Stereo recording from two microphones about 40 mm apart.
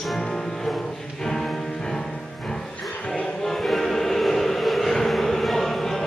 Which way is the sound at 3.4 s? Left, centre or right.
Centre.